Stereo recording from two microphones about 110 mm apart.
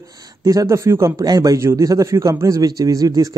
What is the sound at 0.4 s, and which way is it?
Speech, 30° right (ahead or behind).